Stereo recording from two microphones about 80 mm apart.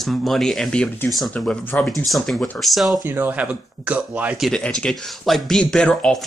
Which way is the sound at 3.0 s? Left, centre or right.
Right.